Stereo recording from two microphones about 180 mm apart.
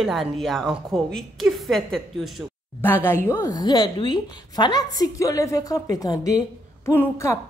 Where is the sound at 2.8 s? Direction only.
10° left (ahead or behind).